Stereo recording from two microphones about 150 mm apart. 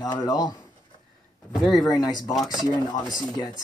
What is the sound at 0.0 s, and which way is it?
Speech, 25° left (ahead or behind).